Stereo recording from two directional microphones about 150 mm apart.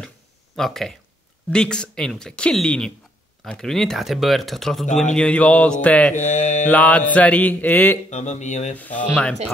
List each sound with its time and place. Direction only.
0.6 s speech: centre (ahead or behind)
5.1 s mantra: 5° left (ahead or behind)
6.2 s mantra: 50° left (ahead or behind)
6.7 s mantra: 10° left (ahead or behind)
8.1 s speech: 50° left (ahead or behind)
8.7 s mantra: 10° left (ahead or behind)